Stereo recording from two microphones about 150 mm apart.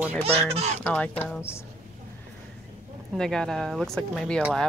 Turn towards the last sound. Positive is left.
turn(degrees=0)  # may be behind; listen again after turning